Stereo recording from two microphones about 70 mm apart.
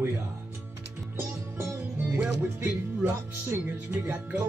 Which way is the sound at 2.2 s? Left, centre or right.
Right.